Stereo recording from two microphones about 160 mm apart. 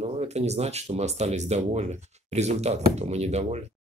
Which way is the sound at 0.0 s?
40° right (ahead or behind).